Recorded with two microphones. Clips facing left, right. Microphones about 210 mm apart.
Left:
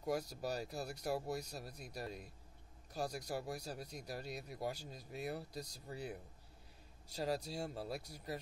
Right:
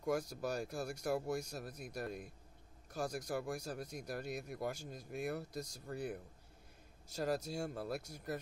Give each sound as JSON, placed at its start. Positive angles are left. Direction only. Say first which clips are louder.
{"t": 0.0, "sound": "speech", "louder": "right 2 dB", "side_deg": -50}